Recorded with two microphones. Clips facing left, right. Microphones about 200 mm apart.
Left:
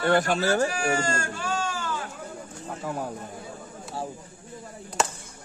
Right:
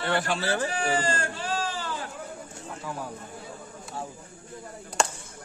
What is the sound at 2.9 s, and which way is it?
Speech, 50° left (ahead or behind).